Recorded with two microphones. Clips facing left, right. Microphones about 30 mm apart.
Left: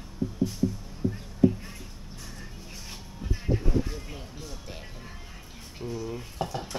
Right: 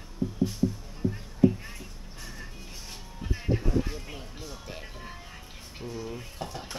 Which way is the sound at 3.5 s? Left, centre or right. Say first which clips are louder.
Even; centre.